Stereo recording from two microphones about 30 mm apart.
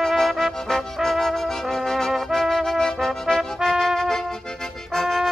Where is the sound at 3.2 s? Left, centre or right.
Centre.